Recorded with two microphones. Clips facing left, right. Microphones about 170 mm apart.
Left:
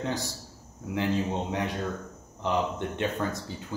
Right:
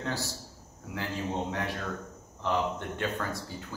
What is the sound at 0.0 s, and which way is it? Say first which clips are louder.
Speech: left 3 dB; 20° left (ahead or behind).